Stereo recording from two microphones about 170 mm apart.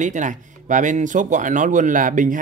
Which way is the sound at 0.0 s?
45° right (ahead or behind).